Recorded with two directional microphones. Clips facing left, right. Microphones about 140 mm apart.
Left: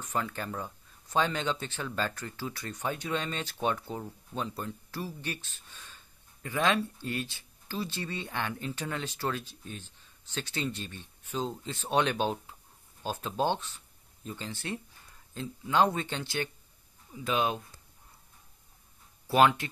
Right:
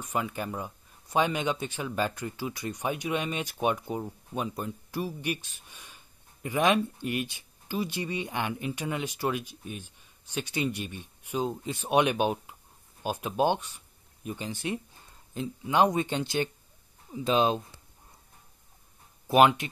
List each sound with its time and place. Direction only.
0.0 s speech: 10° right (ahead or behind)
19.2 s speech: 20° right (ahead or behind)